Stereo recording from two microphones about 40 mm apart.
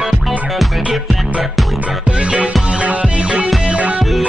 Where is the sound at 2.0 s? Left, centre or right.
Right.